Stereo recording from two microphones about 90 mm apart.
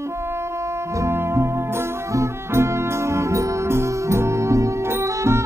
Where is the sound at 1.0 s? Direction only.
30° right (ahead or behind).